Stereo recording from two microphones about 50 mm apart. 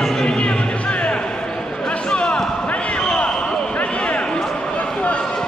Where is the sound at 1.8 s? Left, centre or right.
Centre.